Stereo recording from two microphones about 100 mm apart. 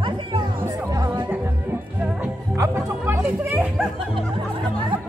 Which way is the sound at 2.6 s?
20° right (ahead or behind).